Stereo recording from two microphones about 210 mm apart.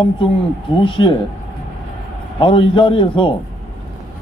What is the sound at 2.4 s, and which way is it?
Speech, 25° left (ahead or behind).